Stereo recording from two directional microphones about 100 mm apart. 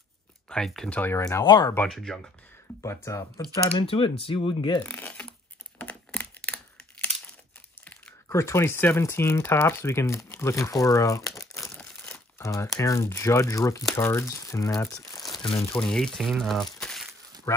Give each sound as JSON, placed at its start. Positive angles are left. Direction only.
{"t": 0.5, "sound": "speech", "side_deg": 5}
{"t": 0.9, "sound": "speech", "side_deg": 20}
{"t": 1.4, "sound": "speech", "side_deg": 50}
{"t": 1.9, "sound": "speech", "side_deg": 5}
{"t": 2.8, "sound": "speech", "side_deg": 30}
{"t": 3.8, "sound": "speech", "side_deg": 70}
{"t": 4.8, "sound": "speech", "side_deg": 15}
{"t": 5.8, "sound": "a sound", "side_deg": 15}
{"t": 7.8, "sound": "crumpling", "side_deg": 15}
{"t": 8.3, "sound": "speech", "side_deg": 30}
{"t": 14.9, "sound": "crumpling", "side_deg": 35}
{"t": 15.7, "sound": "speech", "side_deg": 10}
{"t": 16.8, "sound": "a sound", "side_deg": 5}
{"t": 17.5, "sound": "speech", "side_deg": 30}